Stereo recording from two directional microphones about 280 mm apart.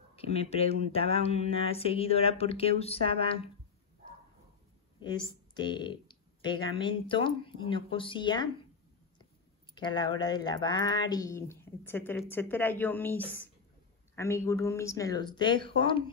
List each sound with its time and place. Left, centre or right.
0.1 s speech: left
5.0 s speech: centre
9.8 s speech: centre